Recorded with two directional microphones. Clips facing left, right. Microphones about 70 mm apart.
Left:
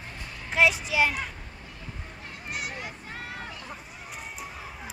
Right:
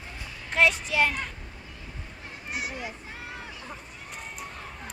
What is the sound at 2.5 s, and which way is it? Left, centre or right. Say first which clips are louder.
Speech: right 2 dB; left.